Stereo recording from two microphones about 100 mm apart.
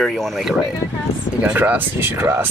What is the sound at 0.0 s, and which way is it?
Speech, centre (ahead or behind).